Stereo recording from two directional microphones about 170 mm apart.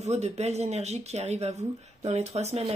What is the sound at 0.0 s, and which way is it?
Speech, 40° right (ahead or behind).